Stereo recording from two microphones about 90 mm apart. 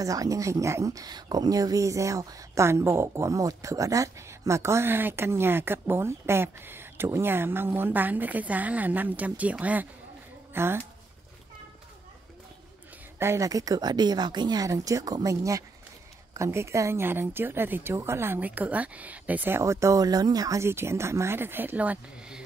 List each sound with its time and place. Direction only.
0.0 s speech: 40° right (ahead or behind)
13.2 s speech: 30° right (ahead or behind)
13.5 s speech: 40° right (ahead or behind)
14.7 s speech: 40° right (ahead or behind); by 19.6 s 20° right (ahead or behind)
19.6 s speech: 35° right (ahead or behind)
20.6 s speech: 30° right (ahead or behind); by 22.4 s 15° right (ahead or behind)